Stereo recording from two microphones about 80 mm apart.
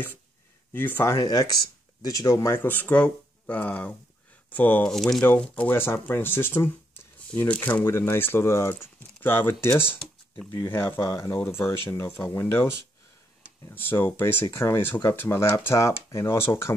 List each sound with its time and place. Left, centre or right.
0.7 s speech: left
1.0 s speech: left
4.8 s speech: centre
5.3 s speech: centre
5.7 s speech: left
7.8 s speech: left
13.7 s speech: left